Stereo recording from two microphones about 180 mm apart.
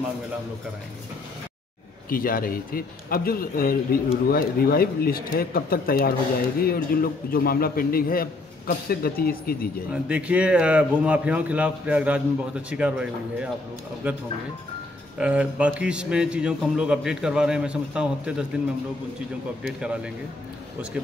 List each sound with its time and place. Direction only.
2.0 s a man's voice: 55° left (ahead or behind)
10.0 s a man's voice: 5° right (ahead or behind)
19.8 s a man's voice: 5° right (ahead or behind)